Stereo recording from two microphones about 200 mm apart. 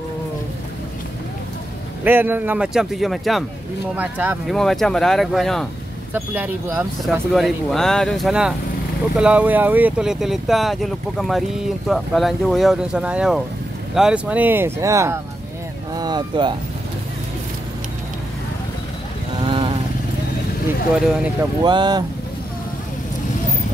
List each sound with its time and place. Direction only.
2.0 s speech: 10° right (ahead or behind)
6.1 s speech: 10° right (ahead or behind)
15.9 s a sound: 20° right (ahead or behind)
19.4 s vehicle: 25° right (ahead or behind)
20.9 s speech: centre (ahead or behind)
21.6 s speech: 20° right (ahead or behind)